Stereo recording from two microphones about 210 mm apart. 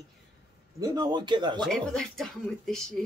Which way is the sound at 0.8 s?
20° right (ahead or behind).